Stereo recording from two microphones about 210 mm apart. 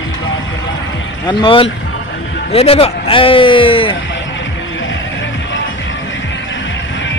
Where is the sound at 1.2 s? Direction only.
25° left (ahead or behind).